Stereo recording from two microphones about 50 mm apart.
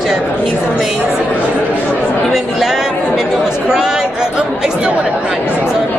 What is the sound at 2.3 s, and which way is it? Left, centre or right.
Speech, centre.